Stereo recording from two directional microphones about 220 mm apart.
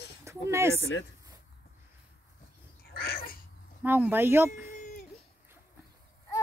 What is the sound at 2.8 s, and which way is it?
Cat, 45° left (ahead or behind).